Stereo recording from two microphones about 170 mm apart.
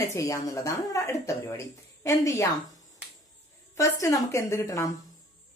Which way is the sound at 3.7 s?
20° left (ahead or behind).